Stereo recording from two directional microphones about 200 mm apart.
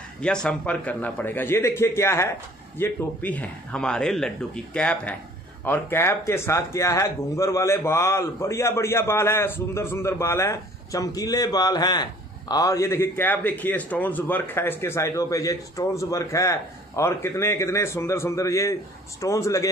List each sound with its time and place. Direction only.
0.2 s a man's voice: 5° left (ahead or behind)